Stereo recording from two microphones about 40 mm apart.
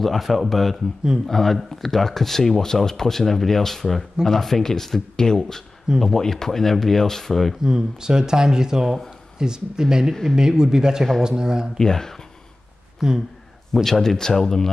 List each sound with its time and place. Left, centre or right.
0.0 s speech: centre
7.6 s speech: centre
11.8 s speech: centre
13.0 s speech: centre
13.8 s speech: centre